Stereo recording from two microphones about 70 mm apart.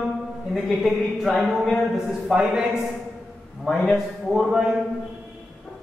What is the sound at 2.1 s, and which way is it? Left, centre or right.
Speech, centre.